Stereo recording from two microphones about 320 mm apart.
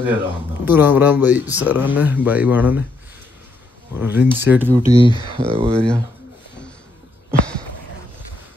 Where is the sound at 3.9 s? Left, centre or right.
Centre.